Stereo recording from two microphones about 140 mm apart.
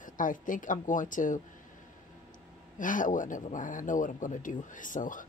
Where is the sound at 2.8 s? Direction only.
70° left (ahead or behind).